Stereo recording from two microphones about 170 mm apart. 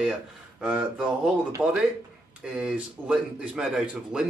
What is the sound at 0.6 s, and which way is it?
Speech, 10° right (ahead or behind).